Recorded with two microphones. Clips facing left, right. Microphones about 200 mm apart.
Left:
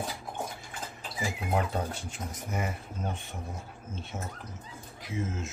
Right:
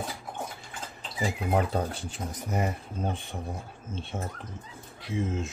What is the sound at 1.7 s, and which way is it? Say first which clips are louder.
Speech: right 3 dB; 35° right (ahead or behind).